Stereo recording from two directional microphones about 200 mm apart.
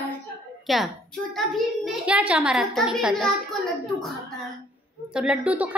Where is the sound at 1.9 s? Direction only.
5° right (ahead or behind).